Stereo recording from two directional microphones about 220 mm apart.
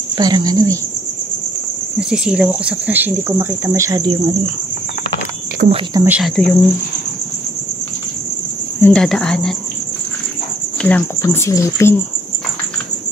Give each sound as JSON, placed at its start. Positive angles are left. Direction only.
{"t": 0.2, "sound": "speech", "side_deg": -20}
{"t": 2.0, "sound": "speech", "side_deg": -5}
{"t": 5.9, "sound": "speech", "side_deg": -5}
{"t": 8.8, "sound": "speech", "side_deg": 5}
{"t": 10.8, "sound": "speech", "side_deg": 5}